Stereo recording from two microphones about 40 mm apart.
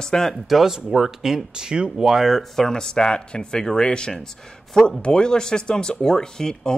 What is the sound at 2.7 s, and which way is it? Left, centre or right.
Speech, centre.